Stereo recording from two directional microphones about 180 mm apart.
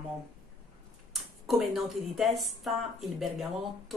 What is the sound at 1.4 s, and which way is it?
A woman's voice, centre (ahead or behind).